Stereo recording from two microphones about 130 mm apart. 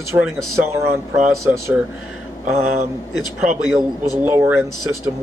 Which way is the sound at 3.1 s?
30° left (ahead or behind).